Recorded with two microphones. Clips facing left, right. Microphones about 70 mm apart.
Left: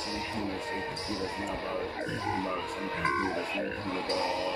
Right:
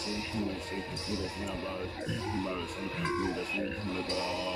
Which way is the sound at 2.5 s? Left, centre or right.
Left.